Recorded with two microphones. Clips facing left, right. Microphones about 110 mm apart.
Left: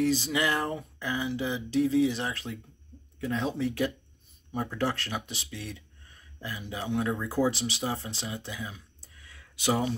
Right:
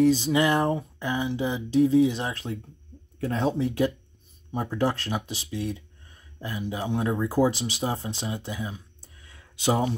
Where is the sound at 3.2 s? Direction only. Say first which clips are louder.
Right 4 dB; 35° right (ahead or behind).